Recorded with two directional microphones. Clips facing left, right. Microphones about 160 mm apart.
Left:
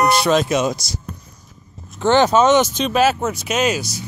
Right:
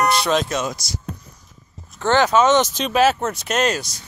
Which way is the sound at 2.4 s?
5° left (ahead or behind).